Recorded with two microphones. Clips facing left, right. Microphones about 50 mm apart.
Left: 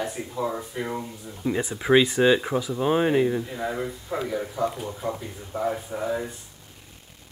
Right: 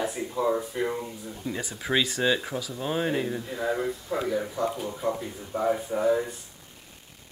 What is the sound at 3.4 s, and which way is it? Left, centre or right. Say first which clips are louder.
A man's voice: right 1 dB; centre.